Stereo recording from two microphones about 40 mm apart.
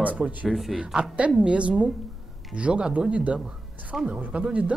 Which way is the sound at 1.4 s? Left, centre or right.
Right.